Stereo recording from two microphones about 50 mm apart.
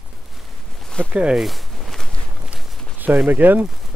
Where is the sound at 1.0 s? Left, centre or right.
Left.